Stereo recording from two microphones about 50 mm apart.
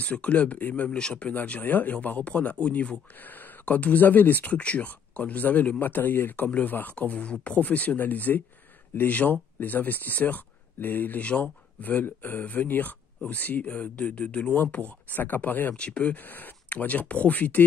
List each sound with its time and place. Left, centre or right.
0.0 s speech: left
0.8 s speech: centre
1.6 s speech: left
15.7 s speech: left
16.2 s speech: left